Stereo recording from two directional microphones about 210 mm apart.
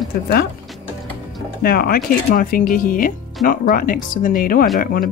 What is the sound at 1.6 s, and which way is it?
Speech, 45° left (ahead or behind).